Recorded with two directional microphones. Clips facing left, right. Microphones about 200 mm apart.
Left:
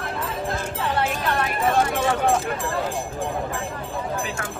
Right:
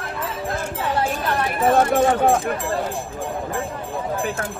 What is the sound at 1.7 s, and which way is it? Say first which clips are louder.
Clip-clop: right 6 dB; 50° right (ahead or behind).